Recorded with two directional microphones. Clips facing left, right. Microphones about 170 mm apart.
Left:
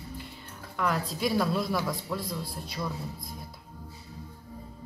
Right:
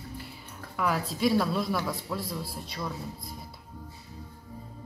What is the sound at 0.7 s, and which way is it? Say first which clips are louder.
A man's voice: even; 5° right (ahead or behind).